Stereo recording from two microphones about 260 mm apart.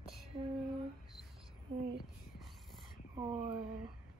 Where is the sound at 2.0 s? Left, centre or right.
Centre.